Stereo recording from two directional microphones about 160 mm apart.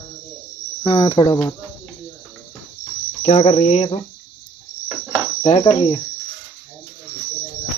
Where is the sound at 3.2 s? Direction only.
40° left (ahead or behind).